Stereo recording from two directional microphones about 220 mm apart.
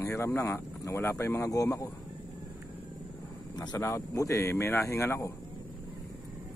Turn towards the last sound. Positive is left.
turn(degrees=10)  # may be behind; listen again after turning